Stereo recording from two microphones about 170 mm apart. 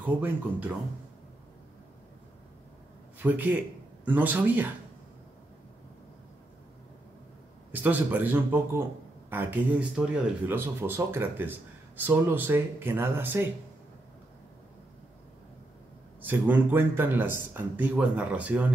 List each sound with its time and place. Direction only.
0.0 s speech: 10° right (ahead or behind)
3.2 s speech: 10° right (ahead or behind)
7.7 s speech: 10° right (ahead or behind)
16.2 s speech: 10° right (ahead or behind)